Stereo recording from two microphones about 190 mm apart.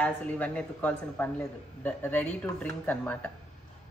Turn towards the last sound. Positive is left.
turn(degrees=10)  # may be behind; listen again after turning